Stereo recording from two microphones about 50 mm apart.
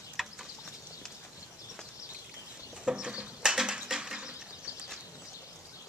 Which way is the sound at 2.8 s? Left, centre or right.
Centre.